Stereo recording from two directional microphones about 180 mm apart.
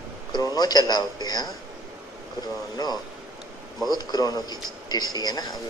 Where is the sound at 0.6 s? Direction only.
20° left (ahead or behind).